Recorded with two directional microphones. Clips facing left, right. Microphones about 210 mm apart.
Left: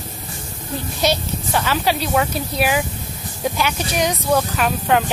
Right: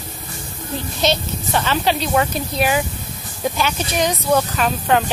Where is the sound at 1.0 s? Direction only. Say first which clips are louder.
Even; 10° left (ahead or behind).